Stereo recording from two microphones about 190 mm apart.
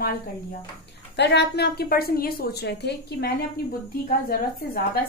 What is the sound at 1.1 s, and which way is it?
A woman's voice, 65° left (ahead or behind).